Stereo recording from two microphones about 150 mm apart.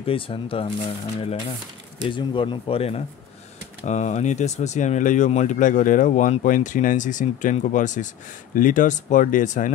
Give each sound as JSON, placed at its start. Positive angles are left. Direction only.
{"t": 0.0, "sound": "speech", "side_deg": 35}
{"t": 3.8, "sound": "speech", "side_deg": 50}